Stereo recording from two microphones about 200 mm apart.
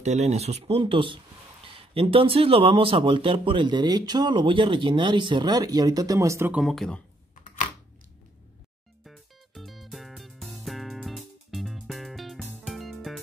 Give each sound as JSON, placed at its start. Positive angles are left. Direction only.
{"t": 0.0, "sound": "speech", "side_deg": -35}
{"t": 6.6, "sound": "speech", "side_deg": 0}
{"t": 9.0, "sound": "music", "side_deg": 0}